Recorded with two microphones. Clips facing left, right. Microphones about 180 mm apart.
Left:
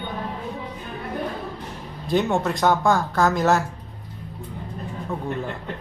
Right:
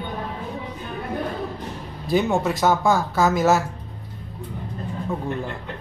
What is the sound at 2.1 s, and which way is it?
Speech, centre (ahead or behind).